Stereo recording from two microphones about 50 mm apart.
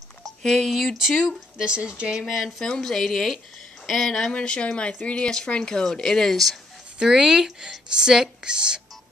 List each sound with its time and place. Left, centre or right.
0.4 s speech: centre
1.7 s speech: centre
2.1 s speech: centre
2.8 s speech: centre
4.3 s speech: centre
7.0 s speech: centre